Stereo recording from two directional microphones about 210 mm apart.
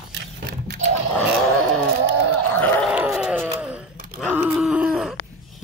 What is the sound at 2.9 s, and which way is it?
Groan, 5° right (ahead or behind).